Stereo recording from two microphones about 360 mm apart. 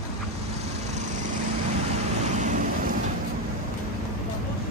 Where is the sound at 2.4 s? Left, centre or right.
Right.